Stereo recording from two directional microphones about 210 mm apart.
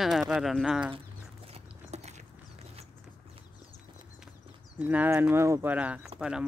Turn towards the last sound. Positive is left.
turn(degrees=-5)  # may be behind; listen again after turning